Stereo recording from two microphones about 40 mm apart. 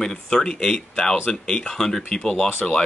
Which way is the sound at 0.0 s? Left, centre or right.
Centre.